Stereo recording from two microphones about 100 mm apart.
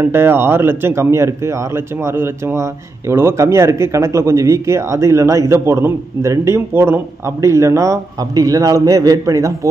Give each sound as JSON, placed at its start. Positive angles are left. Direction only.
{"t": 0.0, "sound": "speech", "side_deg": -25}